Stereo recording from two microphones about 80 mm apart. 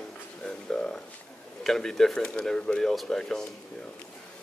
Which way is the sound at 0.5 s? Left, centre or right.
Centre.